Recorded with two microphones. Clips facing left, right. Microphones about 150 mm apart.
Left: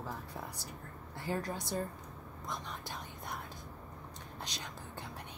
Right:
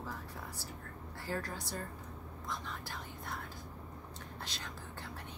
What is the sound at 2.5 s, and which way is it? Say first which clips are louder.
Whispering: left 1 dB; 20° left (ahead or behind).